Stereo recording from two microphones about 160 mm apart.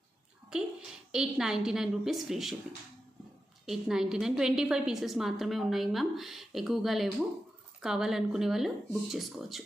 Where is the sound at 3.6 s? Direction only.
5° right (ahead or behind).